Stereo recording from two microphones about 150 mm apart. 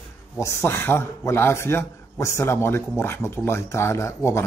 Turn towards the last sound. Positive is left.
turn(degrees=20)  # may be behind; listen again after turning